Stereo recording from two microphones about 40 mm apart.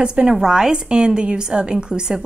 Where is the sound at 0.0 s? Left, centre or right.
Right.